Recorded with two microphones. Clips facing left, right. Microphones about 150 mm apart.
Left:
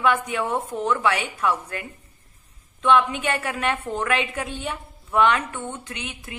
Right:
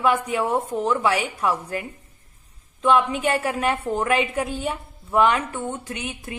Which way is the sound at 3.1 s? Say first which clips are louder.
Right 3 dB; 35° right (ahead or behind).